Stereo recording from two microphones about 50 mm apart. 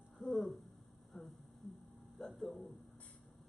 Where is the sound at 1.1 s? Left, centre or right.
Centre.